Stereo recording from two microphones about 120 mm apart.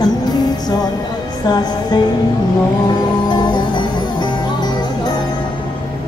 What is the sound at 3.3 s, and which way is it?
Music, 40° left (ahead or behind).